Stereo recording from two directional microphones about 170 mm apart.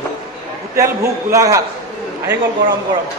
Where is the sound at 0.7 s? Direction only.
15° right (ahead or behind).